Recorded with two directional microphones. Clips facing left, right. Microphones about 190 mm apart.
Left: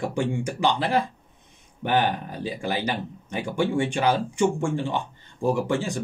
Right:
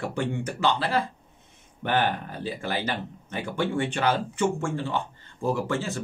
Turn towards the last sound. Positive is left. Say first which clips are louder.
# left 3 dB
turn(degrees=15)  # may be behind; listen again after turning